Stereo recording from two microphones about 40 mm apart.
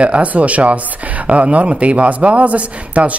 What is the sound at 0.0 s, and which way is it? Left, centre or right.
Speech, right.